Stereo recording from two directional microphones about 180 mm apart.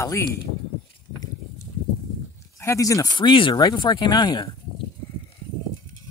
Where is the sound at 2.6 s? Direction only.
15° left (ahead or behind).